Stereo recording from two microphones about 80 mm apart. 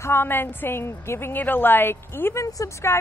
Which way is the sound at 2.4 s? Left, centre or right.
Left.